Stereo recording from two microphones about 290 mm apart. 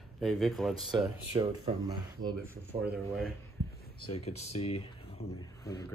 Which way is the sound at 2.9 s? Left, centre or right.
Centre.